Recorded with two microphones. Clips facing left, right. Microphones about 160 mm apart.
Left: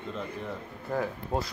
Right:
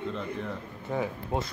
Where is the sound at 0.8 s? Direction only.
Centre (ahead or behind).